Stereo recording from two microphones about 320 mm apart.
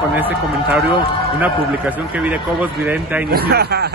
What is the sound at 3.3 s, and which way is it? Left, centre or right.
Speech, right.